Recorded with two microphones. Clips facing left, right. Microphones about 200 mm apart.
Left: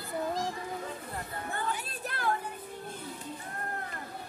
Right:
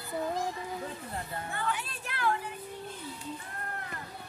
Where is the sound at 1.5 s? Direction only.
40° left (ahead or behind).